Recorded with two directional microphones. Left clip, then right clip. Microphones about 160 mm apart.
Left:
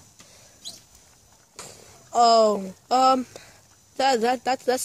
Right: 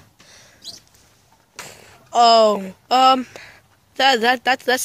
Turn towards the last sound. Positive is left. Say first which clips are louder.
# right 5 dB
turn(degrees=0)  # may be behind; listen again after turning